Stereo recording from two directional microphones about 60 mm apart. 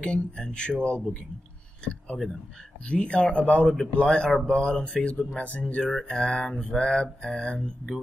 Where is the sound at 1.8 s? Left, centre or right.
Centre.